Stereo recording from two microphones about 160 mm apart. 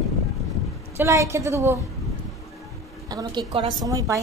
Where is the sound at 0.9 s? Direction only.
20° right (ahead or behind).